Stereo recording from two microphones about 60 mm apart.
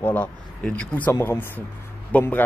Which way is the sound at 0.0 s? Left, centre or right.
Left.